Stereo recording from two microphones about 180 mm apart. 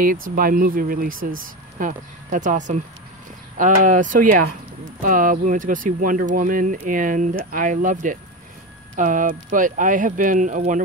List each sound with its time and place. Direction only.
0.4 s speech: 50° right (ahead or behind)